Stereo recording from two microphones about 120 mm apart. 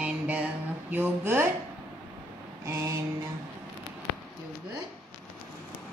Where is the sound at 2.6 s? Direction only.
20° right (ahead or behind).